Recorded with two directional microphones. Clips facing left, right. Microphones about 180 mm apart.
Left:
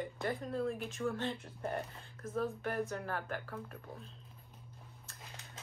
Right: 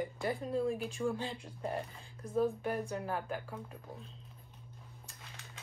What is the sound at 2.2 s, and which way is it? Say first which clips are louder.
A woman's voice: right 4 dB; 15° right (ahead or behind).